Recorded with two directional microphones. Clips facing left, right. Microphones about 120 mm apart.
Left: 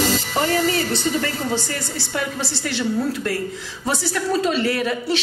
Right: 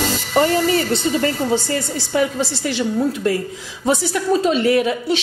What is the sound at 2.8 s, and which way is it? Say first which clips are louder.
A woman's voice: right 3 dB; 20° right (ahead or behind).